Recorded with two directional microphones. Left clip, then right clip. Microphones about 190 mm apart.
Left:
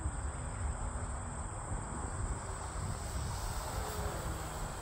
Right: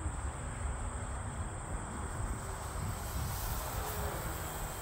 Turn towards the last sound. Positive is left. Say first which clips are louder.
# right 1 dB
turn(degrees=15)  # may be behind; listen again after turning